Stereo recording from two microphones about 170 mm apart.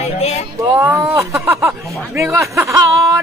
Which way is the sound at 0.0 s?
40° left (ahead or behind).